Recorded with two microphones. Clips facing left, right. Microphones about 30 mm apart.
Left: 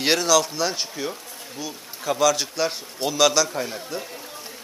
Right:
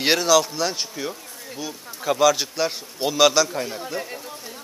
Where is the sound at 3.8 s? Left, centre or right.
Centre.